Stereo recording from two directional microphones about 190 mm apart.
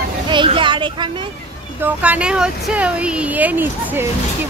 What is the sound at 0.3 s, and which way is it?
A child's voice, 25° right (ahead or behind).